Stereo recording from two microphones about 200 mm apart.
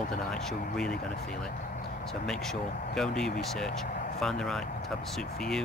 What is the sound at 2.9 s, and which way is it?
Speech, 5° left (ahead or behind).